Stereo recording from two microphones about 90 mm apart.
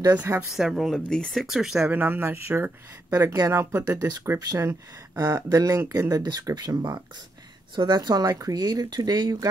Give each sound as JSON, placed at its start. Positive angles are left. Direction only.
{"t": 0.4, "sound": "speech", "side_deg": -5}
{"t": 1.9, "sound": "speech", "side_deg": -20}
{"t": 3.1, "sound": "speech", "side_deg": -40}